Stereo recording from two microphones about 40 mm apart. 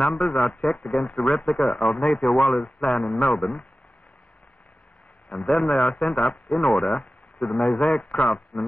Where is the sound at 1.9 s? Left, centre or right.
Left.